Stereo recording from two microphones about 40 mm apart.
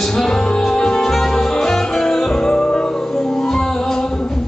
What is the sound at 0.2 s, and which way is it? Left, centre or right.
Music, centre.